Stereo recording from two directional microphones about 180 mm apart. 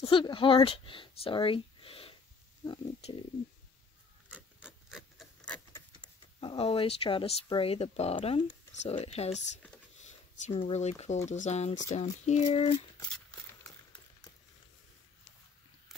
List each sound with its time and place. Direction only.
0.0 s speech: 30° left (ahead or behind)
4.6 s rub: 5° right (ahead or behind)
5.5 s a sound: 15° left (ahead or behind)
6.4 s speech: 30° left (ahead or behind)